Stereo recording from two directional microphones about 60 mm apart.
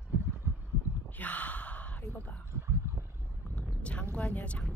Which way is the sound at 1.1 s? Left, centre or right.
Left.